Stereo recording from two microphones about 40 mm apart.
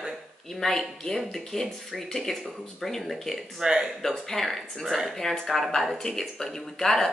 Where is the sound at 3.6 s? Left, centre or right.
Centre.